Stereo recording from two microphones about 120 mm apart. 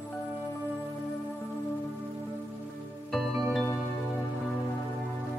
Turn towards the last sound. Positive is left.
turn(degrees=0)  # may be behind; listen again after turning